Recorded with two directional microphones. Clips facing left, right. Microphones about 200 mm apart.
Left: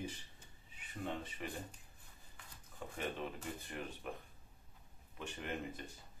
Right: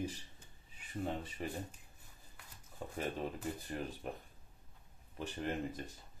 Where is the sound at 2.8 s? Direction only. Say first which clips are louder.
Right 3 dB; 35° right (ahead or behind).